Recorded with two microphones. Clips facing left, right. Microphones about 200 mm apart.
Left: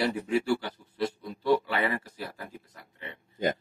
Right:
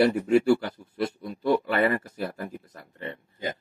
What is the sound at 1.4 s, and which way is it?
Speech, 50° right (ahead or behind).